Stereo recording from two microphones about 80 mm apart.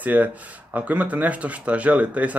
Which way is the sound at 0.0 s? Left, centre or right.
Centre.